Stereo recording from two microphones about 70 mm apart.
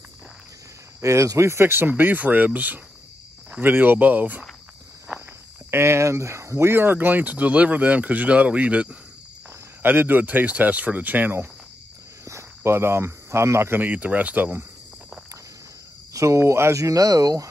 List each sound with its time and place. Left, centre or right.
1.0 s speech: right
5.7 s speech: right
12.3 s speech: right
16.1 s speech: right